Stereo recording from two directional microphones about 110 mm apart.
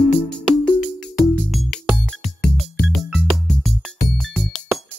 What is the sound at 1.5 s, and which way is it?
Music, centre (ahead or behind).